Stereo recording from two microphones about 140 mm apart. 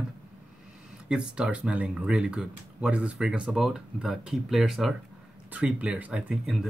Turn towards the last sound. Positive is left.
turn(degrees=-5)  # may be behind; listen again after turning